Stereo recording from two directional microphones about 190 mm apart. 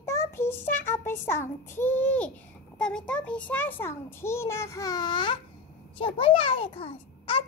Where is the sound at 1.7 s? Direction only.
10° left (ahead or behind).